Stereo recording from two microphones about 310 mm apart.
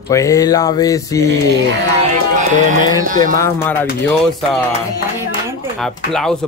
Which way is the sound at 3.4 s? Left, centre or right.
Centre.